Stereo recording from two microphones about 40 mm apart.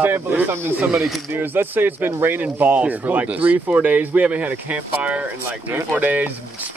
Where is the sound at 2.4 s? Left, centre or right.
Right.